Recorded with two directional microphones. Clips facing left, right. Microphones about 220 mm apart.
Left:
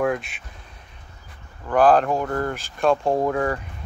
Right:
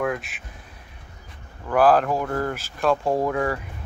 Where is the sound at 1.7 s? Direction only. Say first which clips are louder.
Left 1 dB; 5° right (ahead or behind).